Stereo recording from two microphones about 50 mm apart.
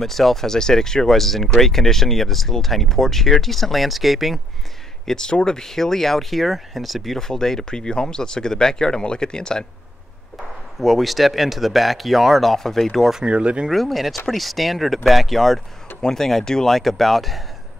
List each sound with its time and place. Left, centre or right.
0.0 s speech: centre
5.0 s speech: centre
10.3 s speech: centre
13.2 s speech: right
13.7 s speech: centre